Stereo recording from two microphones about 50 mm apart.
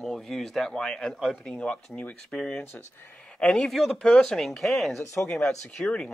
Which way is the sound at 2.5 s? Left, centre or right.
Left.